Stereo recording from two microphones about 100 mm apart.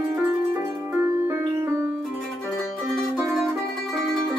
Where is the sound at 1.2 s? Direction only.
30° right (ahead or behind).